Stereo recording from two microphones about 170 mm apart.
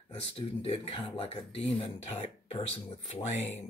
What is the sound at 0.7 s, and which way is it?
Speech, 35° left (ahead or behind).